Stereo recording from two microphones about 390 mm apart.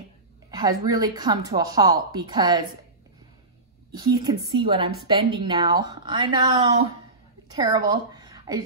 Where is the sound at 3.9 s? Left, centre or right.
Centre.